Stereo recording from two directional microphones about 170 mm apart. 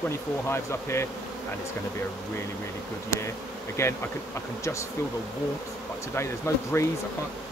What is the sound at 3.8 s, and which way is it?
Bee, 15° left (ahead or behind).